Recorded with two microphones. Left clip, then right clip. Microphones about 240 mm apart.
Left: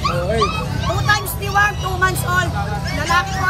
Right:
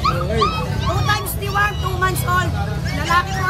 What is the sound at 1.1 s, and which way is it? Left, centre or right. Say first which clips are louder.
Vehicle: left 3 dB; centre.